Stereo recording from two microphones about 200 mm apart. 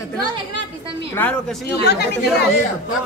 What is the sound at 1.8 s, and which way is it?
Speech, 55° left (ahead or behind).